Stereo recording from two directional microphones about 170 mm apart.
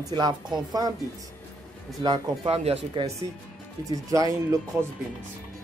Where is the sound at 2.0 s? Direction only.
25° right (ahead or behind).